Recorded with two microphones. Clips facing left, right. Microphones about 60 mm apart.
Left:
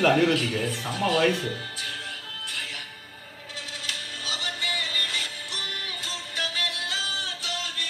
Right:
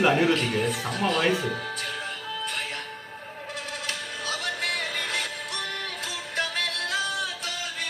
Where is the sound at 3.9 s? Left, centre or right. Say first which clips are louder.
Right 1 dB; right.